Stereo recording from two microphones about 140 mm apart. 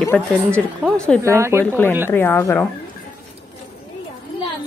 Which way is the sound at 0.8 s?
5° right (ahead or behind).